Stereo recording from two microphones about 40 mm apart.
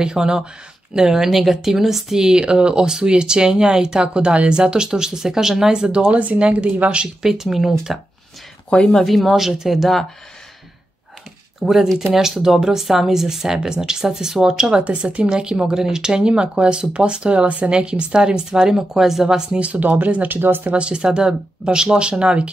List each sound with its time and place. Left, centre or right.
0.0 s speech: centre
6.0 s speech: right
7.2 s speech: centre
8.6 s speech: left
9.0 s speech: centre
11.6 s speech: centre
14.9 s speech: right
15.2 s speech: centre
19.2 s speech: centre
19.6 s speech: right
20.0 s speech: right
20.3 s speech: right
20.7 s speech: right